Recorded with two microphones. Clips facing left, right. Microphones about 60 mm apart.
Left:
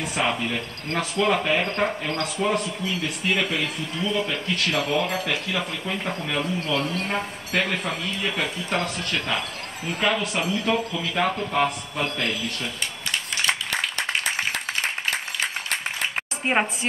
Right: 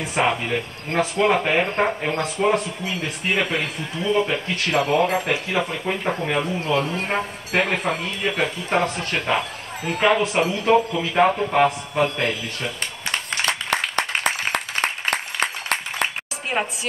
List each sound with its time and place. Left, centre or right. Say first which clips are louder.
0.1 s a man's voice: right 5 dB; right
13.1 s a sound: right 1 dB; right
16.5 s a woman's voice: left 2 dB; left